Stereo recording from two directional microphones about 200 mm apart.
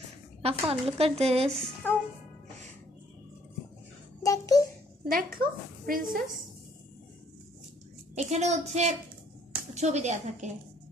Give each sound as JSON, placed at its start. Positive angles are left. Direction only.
{"t": 0.4, "sound": "a woman's voice", "side_deg": -30}
{"t": 4.2, "sound": "a sound", "side_deg": 15}
{"t": 5.0, "sound": "a woman's voice", "side_deg": -45}
{"t": 8.1, "sound": "a child's voice", "side_deg": -35}